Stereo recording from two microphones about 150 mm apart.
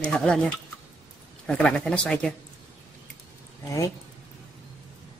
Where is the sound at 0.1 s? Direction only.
5° left (ahead or behind).